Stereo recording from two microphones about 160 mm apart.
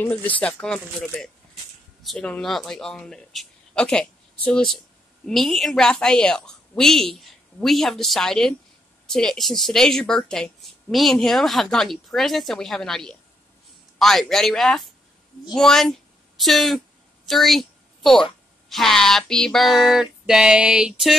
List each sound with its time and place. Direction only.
0.0 s a woman's voice: 10° left (ahead or behind)
17.3 s a sound: centre (ahead or behind)
18.7 s a woman's voice: centre (ahead or behind)